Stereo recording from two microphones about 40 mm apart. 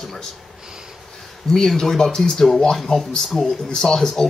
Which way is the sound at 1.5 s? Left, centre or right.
Centre.